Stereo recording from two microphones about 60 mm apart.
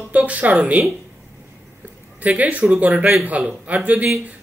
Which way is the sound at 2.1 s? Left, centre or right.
Right.